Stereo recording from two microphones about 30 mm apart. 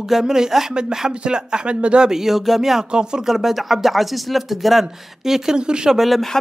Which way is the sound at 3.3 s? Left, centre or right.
Centre.